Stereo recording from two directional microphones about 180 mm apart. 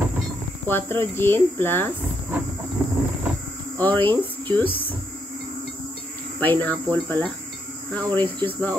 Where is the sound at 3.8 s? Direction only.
10° left (ahead or behind).